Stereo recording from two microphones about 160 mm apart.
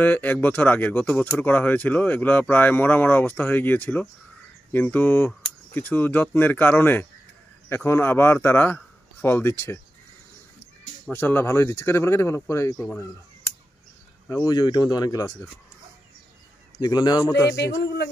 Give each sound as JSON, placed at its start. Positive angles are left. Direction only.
{"t": 0.0, "sound": "a man's voice", "side_deg": 10}
{"t": 11.1, "sound": "speech", "side_deg": 15}
{"t": 14.4, "sound": "speech", "side_deg": 25}
{"t": 16.7, "sound": "speech", "side_deg": 25}
{"t": 17.8, "sound": "speech", "side_deg": 90}